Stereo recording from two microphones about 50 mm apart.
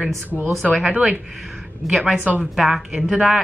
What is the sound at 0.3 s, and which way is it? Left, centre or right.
Speech, centre.